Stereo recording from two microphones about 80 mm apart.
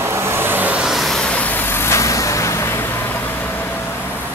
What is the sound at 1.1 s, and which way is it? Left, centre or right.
Vehicle, centre.